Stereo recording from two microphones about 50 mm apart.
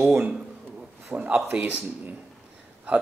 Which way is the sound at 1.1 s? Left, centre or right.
Right.